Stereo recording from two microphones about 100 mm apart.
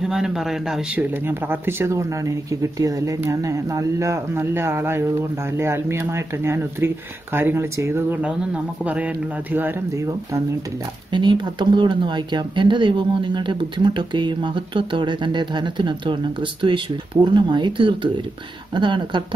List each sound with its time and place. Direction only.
0.0 s speech: 5° right (ahead or behind)
0.9 s speech: 20° right (ahead or behind)
8.8 s speech: 15° right (ahead or behind)
9.9 s speech: 30° right (ahead or behind)
11.1 s speech: 50° right (ahead or behind)